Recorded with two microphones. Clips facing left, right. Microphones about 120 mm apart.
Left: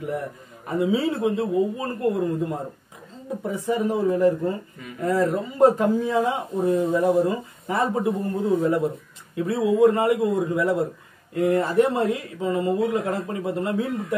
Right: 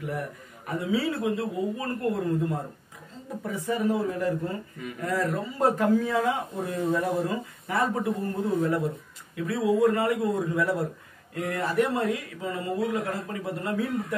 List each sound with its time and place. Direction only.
0.7 s a man's voice: 25° left (ahead or behind)
8.5 s a man's voice: 25° left (ahead or behind)